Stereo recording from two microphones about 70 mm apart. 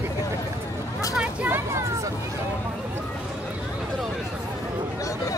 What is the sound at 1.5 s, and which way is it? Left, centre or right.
Hubbub, right.